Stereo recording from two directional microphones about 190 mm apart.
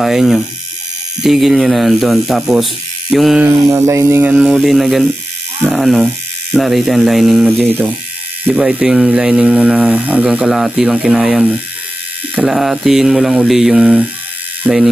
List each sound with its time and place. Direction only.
0.0 s speech: centre (ahead or behind)
3.4 s speech: 15° right (ahead or behind)
7.6 s speech: 10° right (ahead or behind)